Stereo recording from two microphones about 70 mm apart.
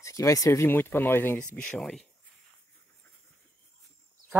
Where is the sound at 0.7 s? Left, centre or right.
Left.